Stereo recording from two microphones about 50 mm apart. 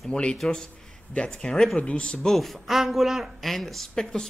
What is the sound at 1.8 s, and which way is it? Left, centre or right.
Speech, left.